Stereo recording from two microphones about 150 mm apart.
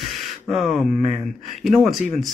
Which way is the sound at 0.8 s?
60° left (ahead or behind).